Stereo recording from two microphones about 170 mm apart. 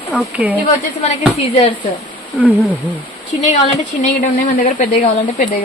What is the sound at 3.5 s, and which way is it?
Speech, 45° left (ahead or behind).